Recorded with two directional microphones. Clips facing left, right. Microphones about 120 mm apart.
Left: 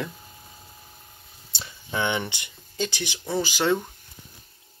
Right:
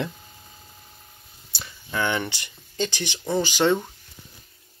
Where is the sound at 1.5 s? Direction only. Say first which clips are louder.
Right 1 dB; 20° left (ahead or behind).